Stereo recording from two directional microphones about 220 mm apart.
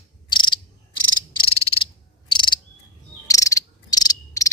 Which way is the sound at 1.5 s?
25° left (ahead or behind).